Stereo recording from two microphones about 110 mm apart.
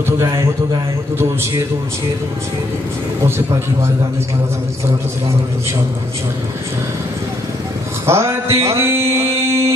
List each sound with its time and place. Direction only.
3.3 s music: 25° right (ahead or behind)
8.1 s music: 25° right (ahead or behind)
9.1 s a sound: 25° right (ahead or behind)